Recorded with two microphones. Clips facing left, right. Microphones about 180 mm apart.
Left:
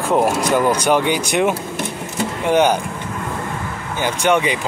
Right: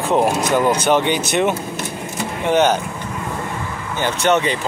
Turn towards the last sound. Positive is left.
turn(degrees=10)  # may be behind; listen again after turning